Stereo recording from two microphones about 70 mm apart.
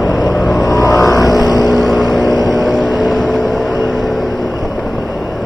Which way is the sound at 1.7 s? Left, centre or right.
Centre.